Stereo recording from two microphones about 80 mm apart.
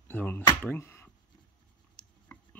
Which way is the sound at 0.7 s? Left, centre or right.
Left.